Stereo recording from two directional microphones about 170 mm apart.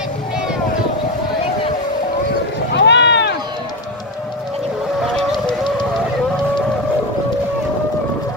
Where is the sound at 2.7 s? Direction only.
90° left.